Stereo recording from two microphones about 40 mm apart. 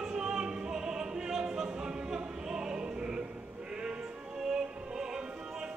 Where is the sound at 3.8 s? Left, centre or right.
Centre.